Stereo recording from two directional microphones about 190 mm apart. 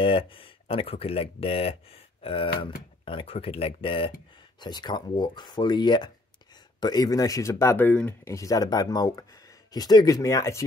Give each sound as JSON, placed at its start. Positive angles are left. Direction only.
{"t": 0.0, "sound": "speech", "side_deg": 25}